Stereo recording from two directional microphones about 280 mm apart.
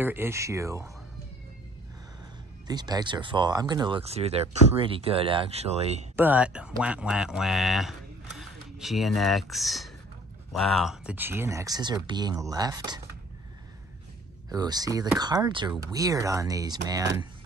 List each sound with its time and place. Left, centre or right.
0.0 s speech: centre
2.7 s speech: centre
6.1 s speech: centre
14.5 s speech: centre